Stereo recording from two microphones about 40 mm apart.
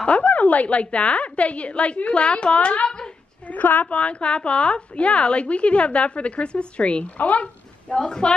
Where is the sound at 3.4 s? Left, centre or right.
Left.